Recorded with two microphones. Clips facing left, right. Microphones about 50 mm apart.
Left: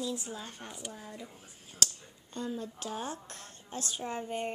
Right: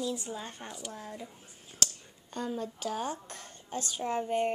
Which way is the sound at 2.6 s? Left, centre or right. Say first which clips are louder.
Right 4 dB; centre.